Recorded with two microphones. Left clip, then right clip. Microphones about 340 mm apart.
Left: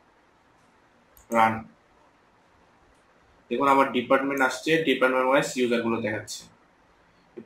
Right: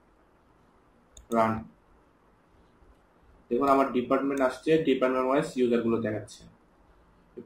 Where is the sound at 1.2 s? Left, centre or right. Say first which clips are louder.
Left 4 dB; left.